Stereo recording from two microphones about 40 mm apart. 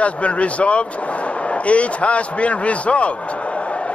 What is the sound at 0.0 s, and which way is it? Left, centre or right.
Speech, left.